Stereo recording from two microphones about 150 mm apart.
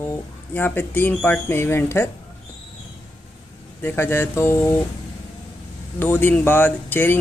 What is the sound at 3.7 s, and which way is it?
A man's voice, 15° left (ahead or behind).